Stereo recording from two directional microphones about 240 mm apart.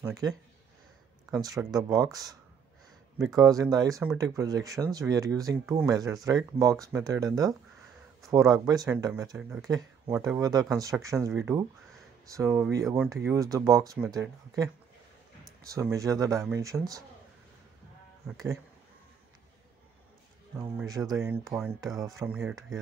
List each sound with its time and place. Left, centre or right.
0.0 s speech: centre
1.3 s speech: centre
3.3 s speech: centre
9.7 s speech: centre
20.5 s speech: centre